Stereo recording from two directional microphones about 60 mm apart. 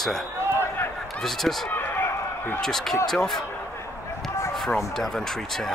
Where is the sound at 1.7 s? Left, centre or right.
Left.